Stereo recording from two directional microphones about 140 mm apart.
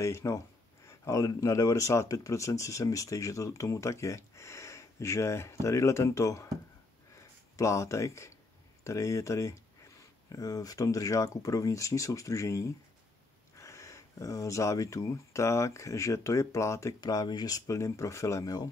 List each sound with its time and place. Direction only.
0.0 s speech: 20° left (ahead or behind)
7.5 s speech: 20° left (ahead or behind)